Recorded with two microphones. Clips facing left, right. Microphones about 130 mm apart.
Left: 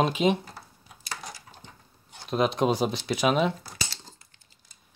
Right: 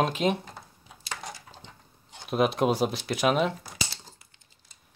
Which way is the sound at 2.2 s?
5° right (ahead or behind).